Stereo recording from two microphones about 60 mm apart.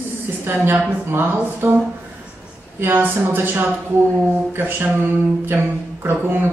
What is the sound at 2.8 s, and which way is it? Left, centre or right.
A woman's voice, right.